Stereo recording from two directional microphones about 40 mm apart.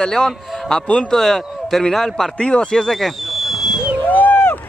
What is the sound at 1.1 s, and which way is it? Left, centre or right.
Speech, centre.